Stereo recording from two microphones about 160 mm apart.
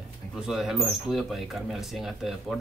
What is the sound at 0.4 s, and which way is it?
Speech, 5° right (ahead or behind).